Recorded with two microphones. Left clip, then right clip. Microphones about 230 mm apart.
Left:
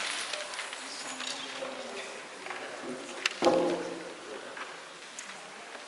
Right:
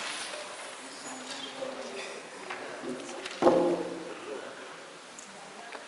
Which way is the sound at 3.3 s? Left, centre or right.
Centre.